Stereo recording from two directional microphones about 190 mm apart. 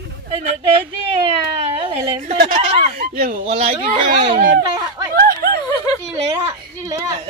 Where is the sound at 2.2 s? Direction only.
50° right (ahead or behind).